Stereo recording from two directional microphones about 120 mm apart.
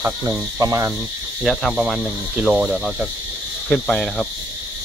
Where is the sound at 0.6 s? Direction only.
25° right (ahead or behind).